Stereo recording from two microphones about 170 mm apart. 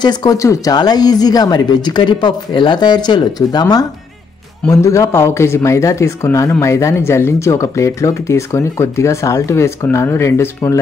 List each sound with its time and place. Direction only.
0.0 s speech: 25° left (ahead or behind)